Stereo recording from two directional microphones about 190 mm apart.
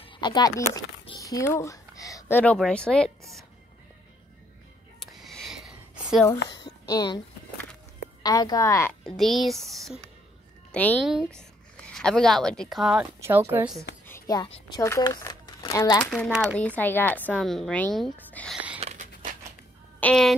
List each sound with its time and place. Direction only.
0.0 s speech: 25° left (ahead or behind); by 3.1 s 5° left (ahead or behind)
5.0 s a sound: centre (ahead or behind)
6.5 s a sound: 20° left (ahead or behind)
8.2 s a woman's voice: 20° left (ahead or behind)
9.0 s a woman's voice: centre (ahead or behind)
14.0 s whispering: 15° left (ahead or behind)
14.8 s speech: 15° left (ahead or behind)
16.0 s a woman's voice: 5° left (ahead or behind)
18.8 s a sound: 35° right (ahead or behind)
20.0 s speech: 5° left (ahead or behind)